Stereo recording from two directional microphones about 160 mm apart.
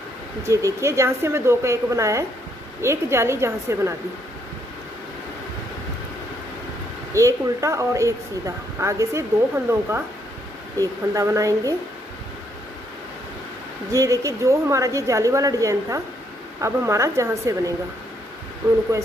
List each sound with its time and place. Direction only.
0.4 s speech: 20° right (ahead or behind)
7.2 s a woman's voice: 20° right (ahead or behind)
13.9 s a woman's voice: 20° right (ahead or behind)